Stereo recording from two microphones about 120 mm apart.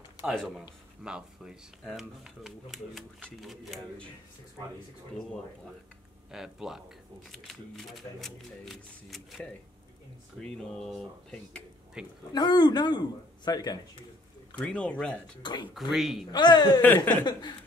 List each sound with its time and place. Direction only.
0.2 s speech: centre (ahead or behind)
6.3 s speech: 5° right (ahead or behind)
10.4 s speech: 5° left (ahead or behind)
12.0 s speech: 5° right (ahead or behind)
12.3 s a man's voice: 35° left (ahead or behind)
14.6 s speech: 10° left (ahead or behind)
15.4 s a man's voice: 40° left (ahead or behind)
15.9 s speech: centre (ahead or behind)
16.3 s a man's voice: 35° left (ahead or behind)
16.8 s speech: 15° left (ahead or behind)
17.2 s a man's voice: 40° left (ahead or behind)